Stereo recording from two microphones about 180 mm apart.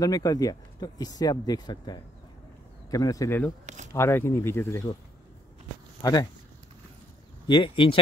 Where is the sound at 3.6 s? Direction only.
40° right (ahead or behind).